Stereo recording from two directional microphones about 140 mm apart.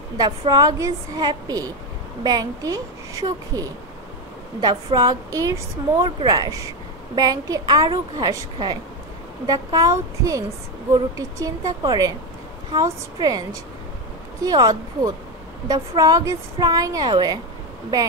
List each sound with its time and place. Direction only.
0.5 s a woman's voice: 25° right (ahead or behind)